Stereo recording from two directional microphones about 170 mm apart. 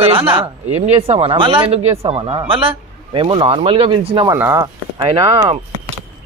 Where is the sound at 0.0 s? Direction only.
35° right (ahead or behind).